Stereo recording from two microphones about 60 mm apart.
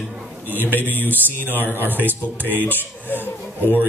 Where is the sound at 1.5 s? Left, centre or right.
Left.